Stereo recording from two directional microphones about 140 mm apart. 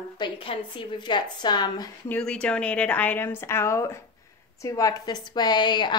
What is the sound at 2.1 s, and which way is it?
A woman's voice, 10° left (ahead or behind).